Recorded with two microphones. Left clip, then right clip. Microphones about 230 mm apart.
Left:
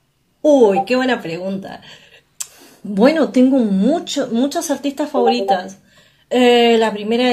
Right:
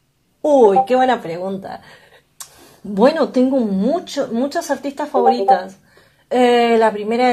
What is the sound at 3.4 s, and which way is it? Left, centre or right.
Speech, centre.